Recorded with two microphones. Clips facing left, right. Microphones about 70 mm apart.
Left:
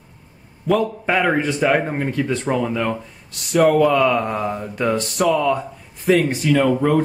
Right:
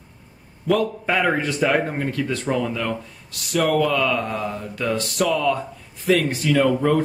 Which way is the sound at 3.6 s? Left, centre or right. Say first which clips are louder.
Left 5 dB; centre.